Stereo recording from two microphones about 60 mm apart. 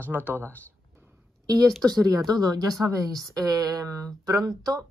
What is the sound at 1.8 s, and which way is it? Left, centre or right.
Speech, right.